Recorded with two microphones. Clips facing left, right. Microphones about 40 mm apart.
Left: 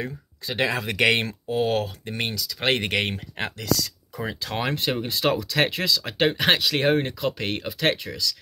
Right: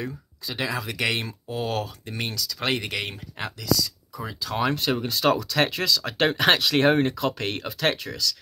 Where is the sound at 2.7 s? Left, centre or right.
Left.